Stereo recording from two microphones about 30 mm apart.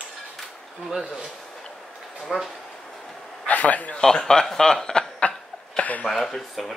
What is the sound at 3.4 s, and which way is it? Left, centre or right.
Speech, left.